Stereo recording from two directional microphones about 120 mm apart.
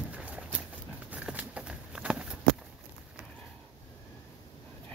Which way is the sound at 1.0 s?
10° right (ahead or behind).